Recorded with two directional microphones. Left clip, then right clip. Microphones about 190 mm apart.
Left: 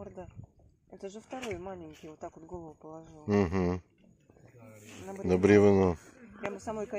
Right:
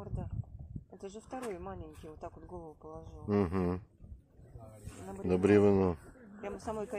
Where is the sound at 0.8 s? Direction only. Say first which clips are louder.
Left 3 dB; 50° left (ahead or behind).